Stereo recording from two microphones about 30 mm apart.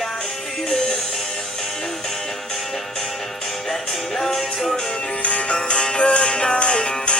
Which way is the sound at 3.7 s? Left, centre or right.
Centre.